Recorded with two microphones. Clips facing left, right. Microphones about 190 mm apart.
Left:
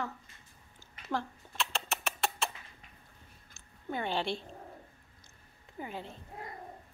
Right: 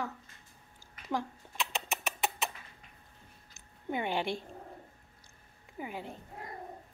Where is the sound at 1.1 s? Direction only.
15° right (ahead or behind).